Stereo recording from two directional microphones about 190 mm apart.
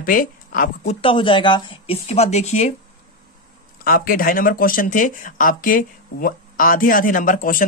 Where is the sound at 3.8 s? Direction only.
50° left (ahead or behind).